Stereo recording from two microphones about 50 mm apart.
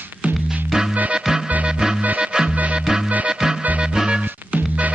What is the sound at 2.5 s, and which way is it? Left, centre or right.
Music, right.